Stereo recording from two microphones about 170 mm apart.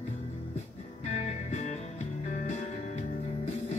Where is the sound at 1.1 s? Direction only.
45° left (ahead or behind).